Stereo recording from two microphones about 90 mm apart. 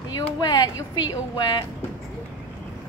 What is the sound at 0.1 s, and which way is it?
Speech, 50° left (ahead or behind).